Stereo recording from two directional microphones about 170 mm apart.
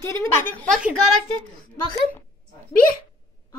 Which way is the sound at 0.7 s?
5° right (ahead or behind).